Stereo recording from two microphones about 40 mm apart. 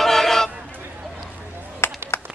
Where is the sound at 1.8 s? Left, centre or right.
Left.